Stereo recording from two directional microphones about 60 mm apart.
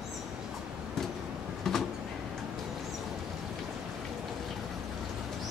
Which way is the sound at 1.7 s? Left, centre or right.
Centre.